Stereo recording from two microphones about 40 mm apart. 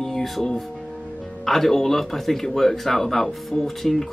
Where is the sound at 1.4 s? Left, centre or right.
Centre.